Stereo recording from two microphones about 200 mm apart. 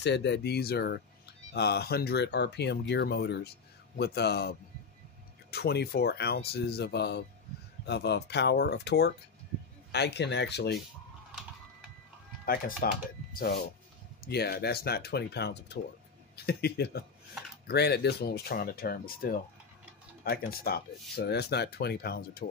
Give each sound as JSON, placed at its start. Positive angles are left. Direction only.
{"t": 0.0, "sound": "speech", "side_deg": 60}
{"t": 12.4, "sound": "speech", "side_deg": 45}